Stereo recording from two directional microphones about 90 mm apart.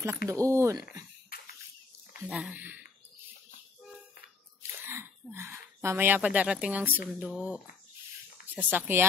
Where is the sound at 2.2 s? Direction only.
15° right (ahead or behind).